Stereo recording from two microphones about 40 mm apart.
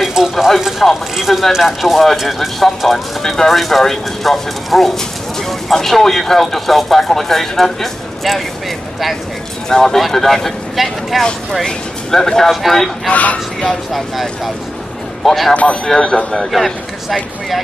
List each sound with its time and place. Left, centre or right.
0.0 s a sound: centre
1.1 s speech: centre
9.7 s speech: centre
9.9 s speech: centre
10.8 s speech: centre
11.6 s speech: centre
13.1 s speech: left
15.2 s speech: centre
15.5 s a man's voice: left
16.5 s speech: centre